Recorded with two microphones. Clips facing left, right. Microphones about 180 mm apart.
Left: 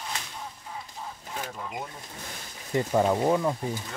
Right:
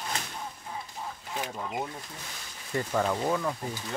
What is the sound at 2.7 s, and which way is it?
Speech, 20° left (ahead or behind).